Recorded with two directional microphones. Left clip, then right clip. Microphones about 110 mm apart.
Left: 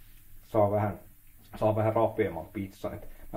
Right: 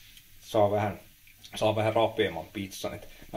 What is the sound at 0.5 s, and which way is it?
Speech, 15° right (ahead or behind).